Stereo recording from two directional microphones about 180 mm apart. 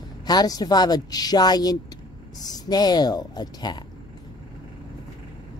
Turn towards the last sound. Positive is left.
turn(degrees=25)  # may be behind; listen again after turning